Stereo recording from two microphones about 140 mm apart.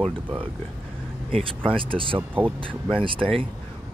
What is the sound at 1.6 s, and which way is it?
Speech, 40° right (ahead or behind).